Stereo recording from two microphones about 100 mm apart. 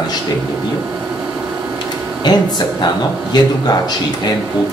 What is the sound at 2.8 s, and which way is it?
Speech, 45° left (ahead or behind).